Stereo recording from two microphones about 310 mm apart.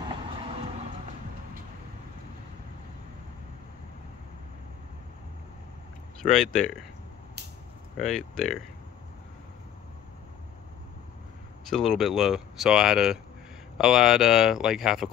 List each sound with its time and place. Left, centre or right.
0.1 s train: centre
6.2 s speech: centre
8.0 s speech: centre
11.7 s speech: centre